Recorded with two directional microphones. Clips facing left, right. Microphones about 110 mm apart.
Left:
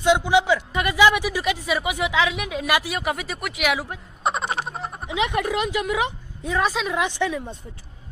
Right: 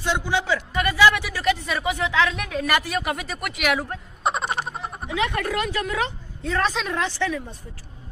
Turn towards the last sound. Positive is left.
turn(degrees=20)  # may be behind; listen again after turning